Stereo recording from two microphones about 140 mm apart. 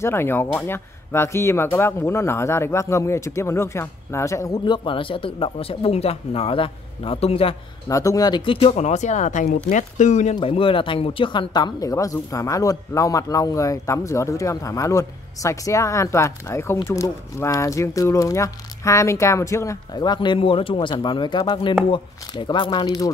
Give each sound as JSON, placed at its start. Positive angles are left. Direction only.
{"t": 0.0, "sound": "speech", "side_deg": 15}
{"t": 4.6, "sound": "speech", "side_deg": 35}
{"t": 7.9, "sound": "speech", "side_deg": 25}
{"t": 10.3, "sound": "speech", "side_deg": 40}